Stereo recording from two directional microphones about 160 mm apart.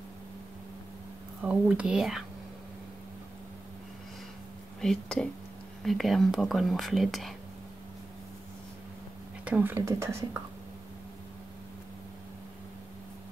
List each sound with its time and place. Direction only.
1.4 s speech: 10° right (ahead or behind)
4.8 s speech: 5° left (ahead or behind)
9.4 s speech: 10° right (ahead or behind)